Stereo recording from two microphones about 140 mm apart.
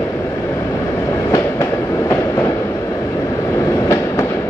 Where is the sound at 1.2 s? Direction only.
25° left (ahead or behind).